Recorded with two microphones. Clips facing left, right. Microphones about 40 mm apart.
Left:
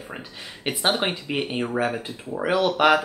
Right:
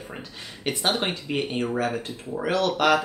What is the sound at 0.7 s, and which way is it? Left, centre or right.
Speech, centre.